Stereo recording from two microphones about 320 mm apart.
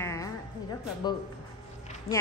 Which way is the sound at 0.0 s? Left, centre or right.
Centre.